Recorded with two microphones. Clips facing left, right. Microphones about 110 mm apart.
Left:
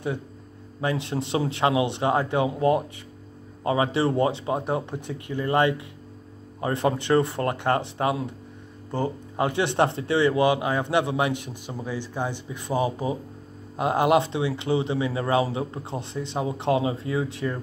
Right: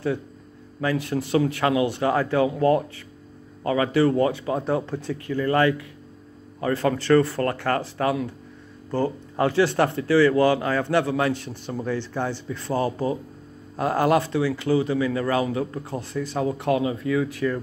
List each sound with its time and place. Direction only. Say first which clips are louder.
0.7 s speech: right 2 dB; 25° left (ahead or behind)